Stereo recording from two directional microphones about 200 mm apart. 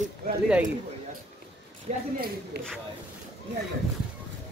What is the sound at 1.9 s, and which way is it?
Speech, 40° right (ahead or behind).